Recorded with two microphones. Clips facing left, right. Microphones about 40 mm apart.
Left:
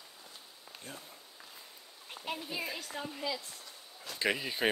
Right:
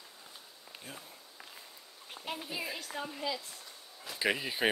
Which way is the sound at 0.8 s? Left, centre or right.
Centre.